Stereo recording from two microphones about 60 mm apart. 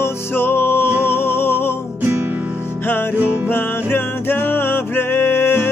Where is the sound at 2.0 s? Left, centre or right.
Right.